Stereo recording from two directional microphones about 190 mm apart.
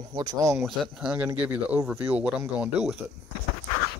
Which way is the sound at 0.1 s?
20° right (ahead or behind).